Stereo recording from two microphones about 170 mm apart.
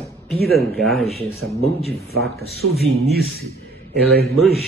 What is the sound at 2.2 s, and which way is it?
Speech, 70° right (ahead or behind).